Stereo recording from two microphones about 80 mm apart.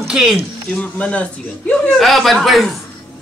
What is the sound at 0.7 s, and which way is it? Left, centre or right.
A man's voice, centre.